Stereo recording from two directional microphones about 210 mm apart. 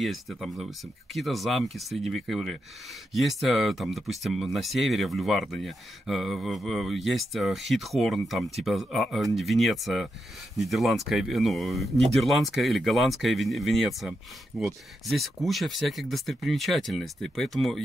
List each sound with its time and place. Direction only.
0.0 s speech: centre (ahead or behind)